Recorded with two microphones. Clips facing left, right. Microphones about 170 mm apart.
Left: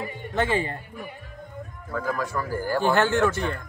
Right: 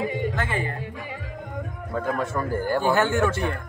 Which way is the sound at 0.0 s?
90° right.